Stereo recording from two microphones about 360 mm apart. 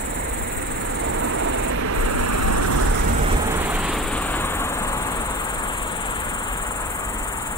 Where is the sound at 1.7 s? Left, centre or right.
Right.